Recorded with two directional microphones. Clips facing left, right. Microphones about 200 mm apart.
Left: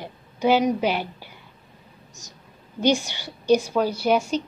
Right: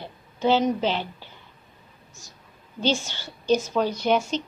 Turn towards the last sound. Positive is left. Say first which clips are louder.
# left 2 dB
turn(degrees=10)  # may be behind; listen again after turning